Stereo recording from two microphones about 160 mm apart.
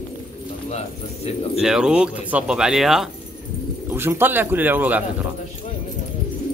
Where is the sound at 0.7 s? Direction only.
40° left (ahead or behind).